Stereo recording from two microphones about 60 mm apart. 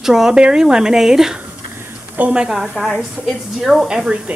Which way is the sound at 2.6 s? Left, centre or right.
Centre.